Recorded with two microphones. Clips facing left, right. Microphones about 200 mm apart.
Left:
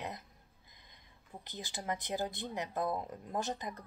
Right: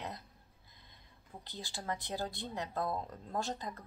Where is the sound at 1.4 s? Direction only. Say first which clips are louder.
Left 1 dB; 20° left (ahead or behind).